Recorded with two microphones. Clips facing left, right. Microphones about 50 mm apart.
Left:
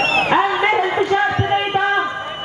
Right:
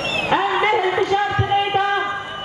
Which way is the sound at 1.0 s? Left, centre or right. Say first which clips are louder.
Left 2 dB; left.